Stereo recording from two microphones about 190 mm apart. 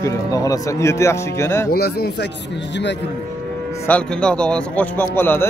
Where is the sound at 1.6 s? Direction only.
55° left (ahead or behind).